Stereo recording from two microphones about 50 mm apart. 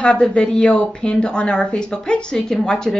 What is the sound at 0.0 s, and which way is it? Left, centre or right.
A woman's voice, left.